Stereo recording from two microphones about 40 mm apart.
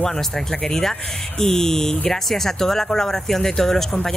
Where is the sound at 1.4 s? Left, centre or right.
Centre.